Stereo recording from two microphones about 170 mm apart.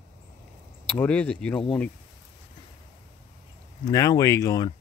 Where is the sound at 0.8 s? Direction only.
5° left (ahead or behind).